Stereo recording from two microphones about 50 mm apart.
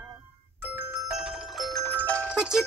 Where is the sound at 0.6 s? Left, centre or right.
Right.